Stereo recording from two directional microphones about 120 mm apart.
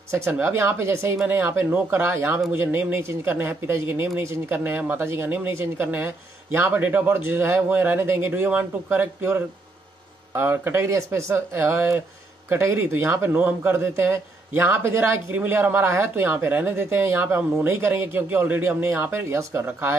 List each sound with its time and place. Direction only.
0.1 s a man's voice: 20° right (ahead or behind)